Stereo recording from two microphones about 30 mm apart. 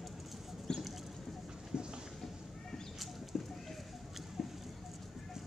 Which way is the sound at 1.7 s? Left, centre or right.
Right.